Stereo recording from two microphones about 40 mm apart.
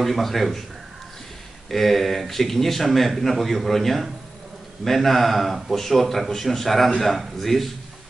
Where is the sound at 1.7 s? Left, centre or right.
Centre.